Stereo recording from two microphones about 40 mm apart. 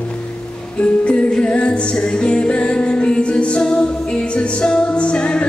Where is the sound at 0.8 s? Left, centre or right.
Left.